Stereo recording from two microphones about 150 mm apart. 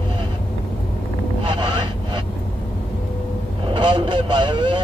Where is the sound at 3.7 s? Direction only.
30° right (ahead or behind).